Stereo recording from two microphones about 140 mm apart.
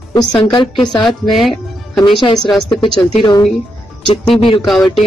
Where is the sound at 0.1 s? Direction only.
30° left (ahead or behind).